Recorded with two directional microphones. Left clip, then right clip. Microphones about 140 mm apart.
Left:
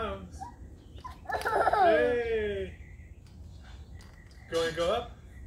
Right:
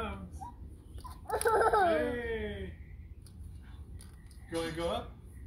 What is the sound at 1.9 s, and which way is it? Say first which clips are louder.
Speech: left 6 dB; 25° left (ahead or behind).